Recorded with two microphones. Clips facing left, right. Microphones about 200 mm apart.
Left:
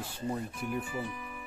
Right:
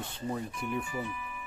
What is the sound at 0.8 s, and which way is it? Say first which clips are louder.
Speech: even; 35° left (ahead or behind).